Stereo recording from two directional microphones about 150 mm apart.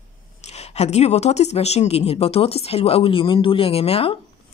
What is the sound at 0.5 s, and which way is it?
Speech, 45° left (ahead or behind).